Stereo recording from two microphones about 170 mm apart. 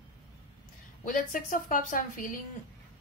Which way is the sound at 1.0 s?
50° left (ahead or behind).